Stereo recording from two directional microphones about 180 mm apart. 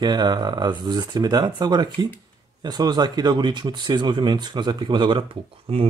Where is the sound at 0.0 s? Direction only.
25° right (ahead or behind).